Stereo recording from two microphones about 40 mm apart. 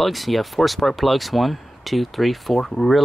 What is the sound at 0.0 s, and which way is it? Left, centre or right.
Speech, centre.